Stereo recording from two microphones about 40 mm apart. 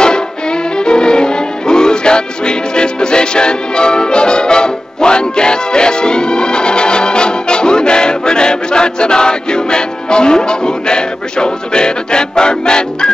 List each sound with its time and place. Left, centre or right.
0.0 s music: left